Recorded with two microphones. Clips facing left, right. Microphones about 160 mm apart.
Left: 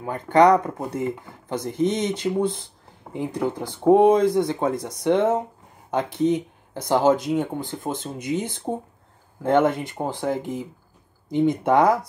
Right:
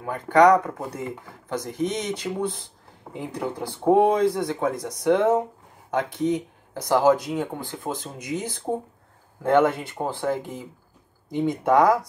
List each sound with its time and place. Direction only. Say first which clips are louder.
0.0 s speech: even; 25° left (ahead or behind)